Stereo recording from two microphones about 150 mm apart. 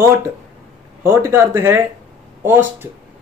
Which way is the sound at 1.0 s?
15° right (ahead or behind).